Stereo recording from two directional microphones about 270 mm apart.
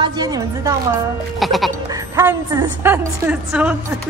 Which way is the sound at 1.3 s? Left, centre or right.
Centre.